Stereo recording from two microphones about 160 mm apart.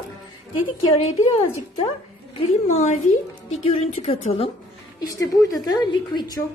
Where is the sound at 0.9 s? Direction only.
45° left (ahead or behind).